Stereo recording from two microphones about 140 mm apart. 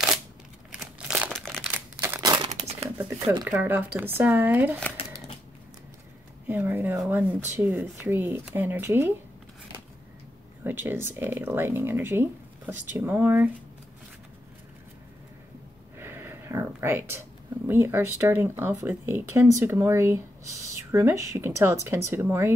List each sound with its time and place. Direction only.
0.7 s crumpling: 5° right (ahead or behind)
2.0 s crumpling: 20° right (ahead or behind)
2.3 s crumpling: 40° right (ahead or behind)
3.4 s speech: 15° right (ahead or behind)
6.4 s speech: 15° right (ahead or behind)
10.6 s speech: 15° right (ahead or behind)
16.0 s a sound: 15° right (ahead or behind)
17.6 s speech: 15° right (ahead or behind)